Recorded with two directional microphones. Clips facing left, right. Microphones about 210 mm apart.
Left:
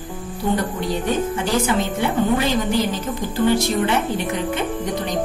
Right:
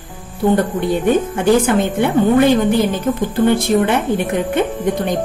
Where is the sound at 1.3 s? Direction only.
55° right (ahead or behind).